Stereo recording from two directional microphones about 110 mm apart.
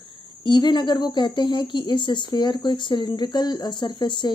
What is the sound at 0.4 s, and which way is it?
Speech, 45° left (ahead or behind).